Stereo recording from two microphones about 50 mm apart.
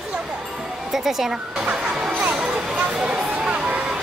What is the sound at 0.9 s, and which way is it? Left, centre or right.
Speech, centre.